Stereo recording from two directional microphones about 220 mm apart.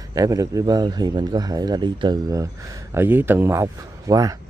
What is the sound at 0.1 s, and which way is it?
Speech, 15° right (ahead or behind).